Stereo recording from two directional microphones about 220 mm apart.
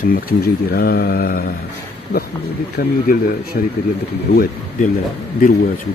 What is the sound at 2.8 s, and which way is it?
Speech, 40° left (ahead or behind).